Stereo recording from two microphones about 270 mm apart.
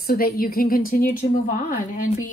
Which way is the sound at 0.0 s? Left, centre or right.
Left.